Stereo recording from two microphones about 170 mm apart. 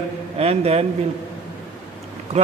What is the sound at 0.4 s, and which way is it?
Speech, 35° right (ahead or behind).